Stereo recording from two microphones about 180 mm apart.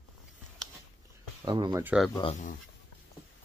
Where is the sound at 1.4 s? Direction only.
25° right (ahead or behind).